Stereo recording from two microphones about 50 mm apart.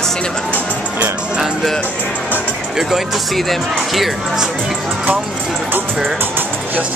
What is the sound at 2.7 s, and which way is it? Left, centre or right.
Speech, centre.